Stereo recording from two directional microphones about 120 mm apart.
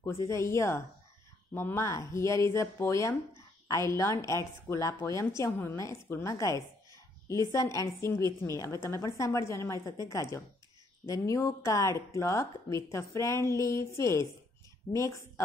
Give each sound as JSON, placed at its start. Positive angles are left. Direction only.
{"t": 0.0, "sound": "speech", "side_deg": 25}